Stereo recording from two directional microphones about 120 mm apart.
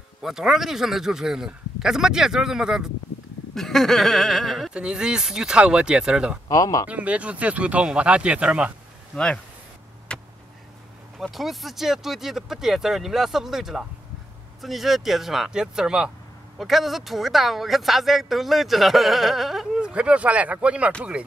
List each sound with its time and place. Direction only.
0.2 s speech: 5° right (ahead or behind)
6.5 s speech: 30° left (ahead or behind)
6.9 s speech: 10° right (ahead or behind)
9.1 s speech: 5° left (ahead or behind)
10.1 s a sound: 5° left (ahead or behind)
11.1 s speech: centre (ahead or behind)